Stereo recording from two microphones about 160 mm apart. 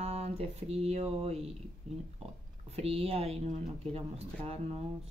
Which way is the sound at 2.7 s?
40° right (ahead or behind).